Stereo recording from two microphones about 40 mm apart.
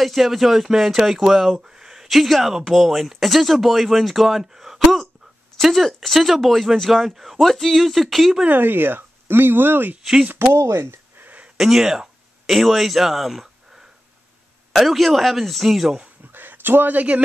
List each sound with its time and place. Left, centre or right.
0.0 s speech: centre
8.5 s speech: right
10.3 s speech: right
11.5 s speech: centre
14.7 s speech: centre
16.3 s a sound: right
16.9 s speech: right